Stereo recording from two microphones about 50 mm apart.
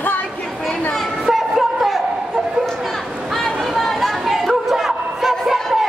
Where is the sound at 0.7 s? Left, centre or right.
Centre.